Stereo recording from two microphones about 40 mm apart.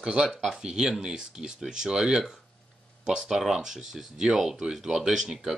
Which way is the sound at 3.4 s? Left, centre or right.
Centre.